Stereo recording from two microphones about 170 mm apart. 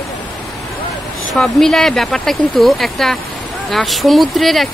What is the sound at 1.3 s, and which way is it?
A woman's voice, 5° left (ahead or behind).